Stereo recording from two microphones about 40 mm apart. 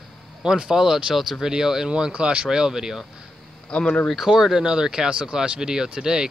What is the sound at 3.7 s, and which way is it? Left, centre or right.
Speech, left.